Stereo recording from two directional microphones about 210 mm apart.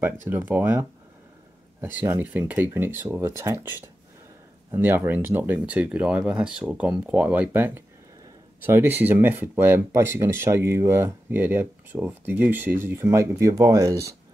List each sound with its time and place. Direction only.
0.0 s speech: 10° right (ahead or behind)
2.0 s speech: 10° right (ahead or behind)